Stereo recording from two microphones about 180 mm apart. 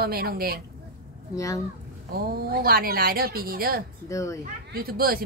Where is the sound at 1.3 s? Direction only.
15° left (ahead or behind).